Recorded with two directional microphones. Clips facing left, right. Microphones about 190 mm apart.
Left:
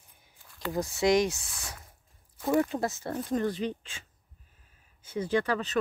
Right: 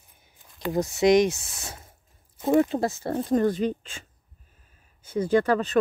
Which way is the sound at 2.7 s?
30° right (ahead or behind).